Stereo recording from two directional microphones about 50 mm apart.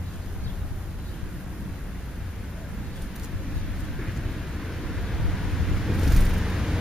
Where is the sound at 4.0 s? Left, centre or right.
Centre.